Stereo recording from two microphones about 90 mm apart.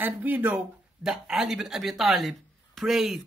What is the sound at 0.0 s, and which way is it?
Speech, 20° right (ahead or behind).